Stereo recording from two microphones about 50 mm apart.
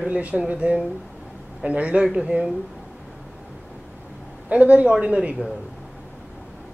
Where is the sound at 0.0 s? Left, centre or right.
Right.